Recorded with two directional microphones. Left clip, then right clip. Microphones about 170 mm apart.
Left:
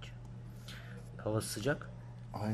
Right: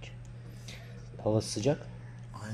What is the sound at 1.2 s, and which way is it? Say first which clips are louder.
Speech: right 6 dB; 15° right (ahead or behind).